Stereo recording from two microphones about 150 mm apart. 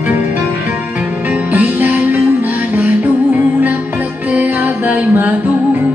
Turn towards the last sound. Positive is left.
turn(degrees=-10)  # may be behind; listen again after turning